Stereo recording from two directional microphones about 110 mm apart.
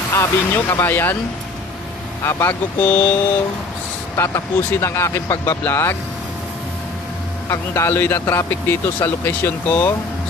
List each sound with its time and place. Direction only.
0.1 s a man's voice: 30° left (ahead or behind)
2.2 s a man's voice: 20° left (ahead or behind)
4.2 s a man's voice: 25° left (ahead or behind)
7.4 s a man's voice: 25° left (ahead or behind)